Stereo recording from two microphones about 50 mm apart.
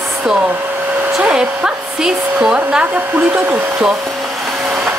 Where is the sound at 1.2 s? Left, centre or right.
Centre.